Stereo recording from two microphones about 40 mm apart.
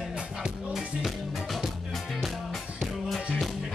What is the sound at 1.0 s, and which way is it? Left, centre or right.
Music, centre.